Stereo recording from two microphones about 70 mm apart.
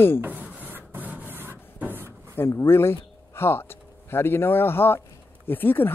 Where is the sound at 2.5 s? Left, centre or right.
Left.